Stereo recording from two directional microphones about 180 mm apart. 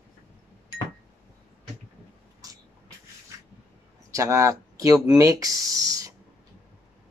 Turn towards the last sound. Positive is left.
turn(degrees=-20)  # may be behind; listen again after turning